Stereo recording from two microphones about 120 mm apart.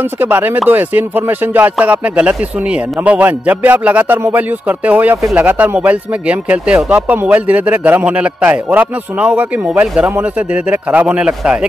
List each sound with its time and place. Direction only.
0.0 s speech: 15° right (ahead or behind)